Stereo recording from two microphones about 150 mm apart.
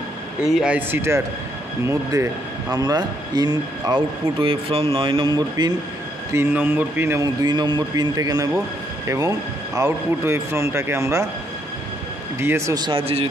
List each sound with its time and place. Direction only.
0.4 s a man's voice: 5° right (ahead or behind); by 5.8 s 30° right (ahead or behind)
6.3 s a man's voice: 15° right (ahead or behind)
7.4 s speech: 30° right (ahead or behind)
12.4 s speech: 15° right (ahead or behind); by 13.3 s 40° right (ahead or behind)